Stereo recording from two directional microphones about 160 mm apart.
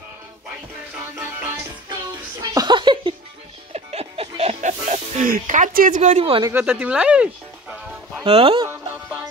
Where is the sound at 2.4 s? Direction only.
25° right (ahead or behind).